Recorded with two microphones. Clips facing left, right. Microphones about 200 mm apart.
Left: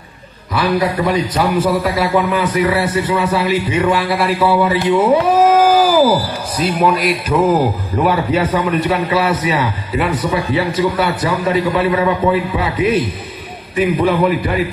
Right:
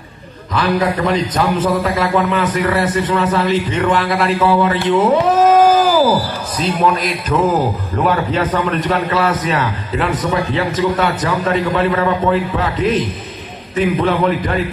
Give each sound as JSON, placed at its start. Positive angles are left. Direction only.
{"t": 0.6, "sound": "a man's voice", "side_deg": 10}
{"t": 4.8, "sound": "a sound", "side_deg": 10}
{"t": 6.6, "sound": "a man's voice", "side_deg": 10}